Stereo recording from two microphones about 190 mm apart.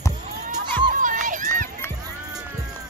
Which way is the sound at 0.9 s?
45° right (ahead or behind).